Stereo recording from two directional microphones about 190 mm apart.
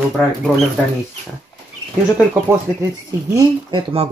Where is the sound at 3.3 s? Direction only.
30° right (ahead or behind).